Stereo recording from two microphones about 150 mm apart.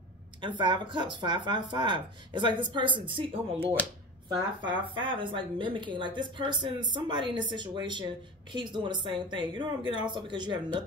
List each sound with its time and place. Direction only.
0.4 s speech: 30° right (ahead or behind)